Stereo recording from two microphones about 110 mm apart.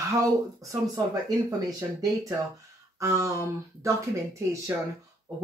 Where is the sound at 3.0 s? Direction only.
30° right (ahead or behind).